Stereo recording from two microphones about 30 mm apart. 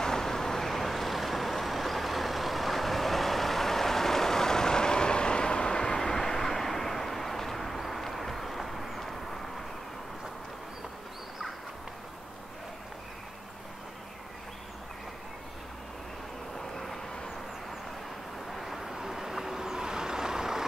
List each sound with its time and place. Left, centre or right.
0.0 s vehicle: centre
16.5 s vehicle: centre
18.5 s vehicle: centre
18.9 s vehicle: centre